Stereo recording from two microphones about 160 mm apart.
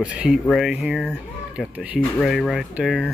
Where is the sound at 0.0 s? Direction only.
5° right (ahead or behind).